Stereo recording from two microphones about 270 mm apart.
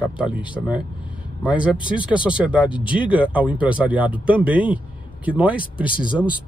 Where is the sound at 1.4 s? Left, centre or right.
Centre.